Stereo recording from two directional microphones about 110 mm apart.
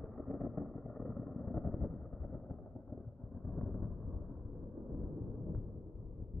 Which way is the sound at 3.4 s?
10° left (ahead or behind).